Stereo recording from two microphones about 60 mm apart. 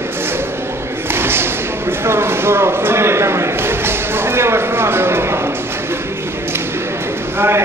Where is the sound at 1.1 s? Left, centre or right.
Right.